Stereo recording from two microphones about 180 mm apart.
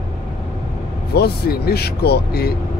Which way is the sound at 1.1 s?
60° left (ahead or behind).